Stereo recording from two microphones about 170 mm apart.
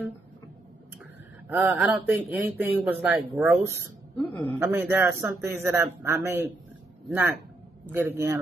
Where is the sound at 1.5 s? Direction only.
5° right (ahead or behind).